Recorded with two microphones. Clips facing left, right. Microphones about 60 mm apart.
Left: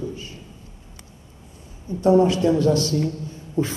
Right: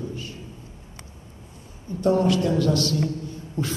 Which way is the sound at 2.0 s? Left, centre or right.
Left.